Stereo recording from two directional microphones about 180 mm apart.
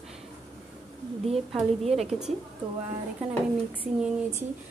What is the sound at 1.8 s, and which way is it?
Speech, 35° right (ahead or behind).